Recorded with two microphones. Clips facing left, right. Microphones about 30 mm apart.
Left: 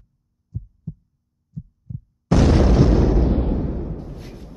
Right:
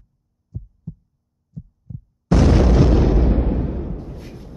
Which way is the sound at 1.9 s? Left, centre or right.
Centre.